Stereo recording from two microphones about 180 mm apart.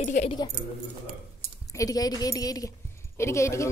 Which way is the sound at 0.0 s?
40° left (ahead or behind).